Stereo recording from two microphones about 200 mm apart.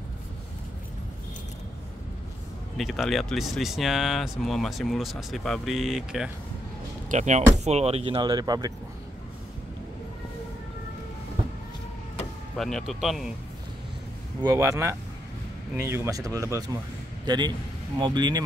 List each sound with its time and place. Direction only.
2.8 s speech: centre (ahead or behind)
7.1 s speech: 35° right (ahead or behind); by 8.7 s 20° right (ahead or behind)
12.5 s speech: centre (ahead or behind)
14.4 s speech: 15° right (ahead or behind)
17.9 s speech: 20° right (ahead or behind)